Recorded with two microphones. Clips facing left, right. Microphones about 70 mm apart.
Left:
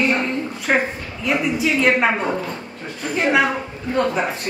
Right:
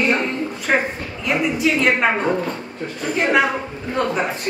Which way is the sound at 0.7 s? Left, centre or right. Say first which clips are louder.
Even; centre.